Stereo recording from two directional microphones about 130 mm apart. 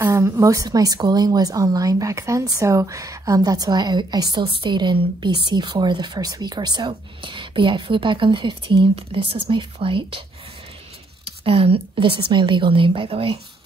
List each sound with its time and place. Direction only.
0.0 s a woman's voice: 20° right (ahead or behind); by 10.2 s 45° right (ahead or behind)
11.2 s a woman's voice: 45° right (ahead or behind)